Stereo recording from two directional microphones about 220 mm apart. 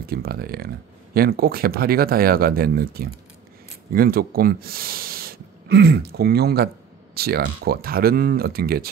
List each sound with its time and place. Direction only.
0.0 s speech: 45° right (ahead or behind)